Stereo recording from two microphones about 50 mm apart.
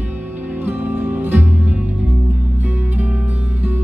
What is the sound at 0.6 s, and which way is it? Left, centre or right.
Music, right.